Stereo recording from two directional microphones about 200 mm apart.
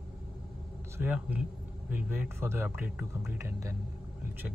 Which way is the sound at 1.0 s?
10° right (ahead or behind).